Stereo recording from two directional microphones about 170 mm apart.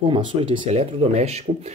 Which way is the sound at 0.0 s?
30° right (ahead or behind).